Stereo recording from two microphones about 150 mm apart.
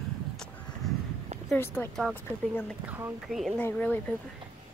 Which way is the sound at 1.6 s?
15° left (ahead or behind).